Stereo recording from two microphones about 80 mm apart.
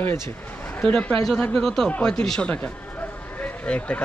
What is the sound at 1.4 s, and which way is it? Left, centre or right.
Speech, centre.